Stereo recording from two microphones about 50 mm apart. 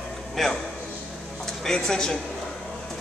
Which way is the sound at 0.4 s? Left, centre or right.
Centre.